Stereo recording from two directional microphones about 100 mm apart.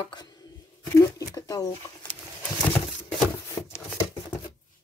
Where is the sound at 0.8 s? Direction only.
35° left (ahead or behind).